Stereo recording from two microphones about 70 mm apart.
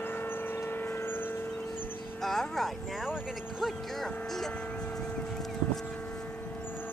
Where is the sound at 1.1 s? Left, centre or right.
Left.